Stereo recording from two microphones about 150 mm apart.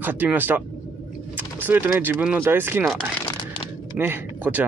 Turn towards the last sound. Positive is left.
turn(degrees=-10)  # may be behind; listen again after turning